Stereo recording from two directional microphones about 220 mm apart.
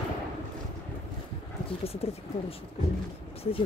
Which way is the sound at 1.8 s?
25° left (ahead or behind).